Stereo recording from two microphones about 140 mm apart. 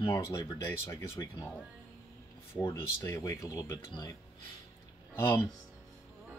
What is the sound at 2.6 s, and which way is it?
Speech, 25° left (ahead or behind).